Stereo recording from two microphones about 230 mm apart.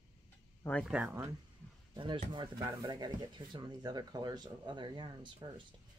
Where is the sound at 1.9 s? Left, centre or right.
Right.